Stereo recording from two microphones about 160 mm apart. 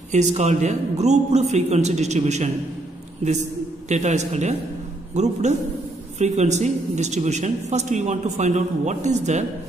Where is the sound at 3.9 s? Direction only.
45° right (ahead or behind).